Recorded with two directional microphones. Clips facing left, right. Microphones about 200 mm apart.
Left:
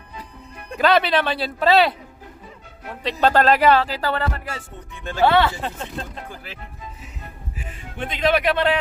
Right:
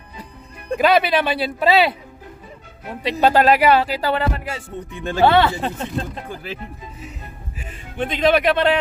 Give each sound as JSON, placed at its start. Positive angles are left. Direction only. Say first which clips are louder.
{"t": 0.7, "sound": "speech", "louder": "right 2 dB", "side_deg": -10}
{"t": 3.0, "sound": "speech", "louder": "right 2 dB", "side_deg": -10}
{"t": 8.1, "sound": "speech", "louder": "right 3 dB", "side_deg": -25}